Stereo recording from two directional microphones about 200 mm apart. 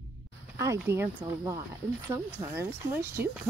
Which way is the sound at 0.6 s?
15° right (ahead or behind).